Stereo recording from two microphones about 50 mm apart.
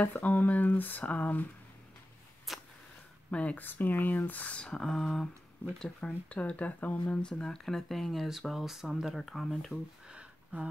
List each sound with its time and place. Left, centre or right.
0.0 s speech: left
2.5 s a sound: centre
3.3 s speech: left
3.6 s speech: left
4.8 s speech: centre
5.9 s speech: left; by 9.8 s centre
10.0 s a sound: right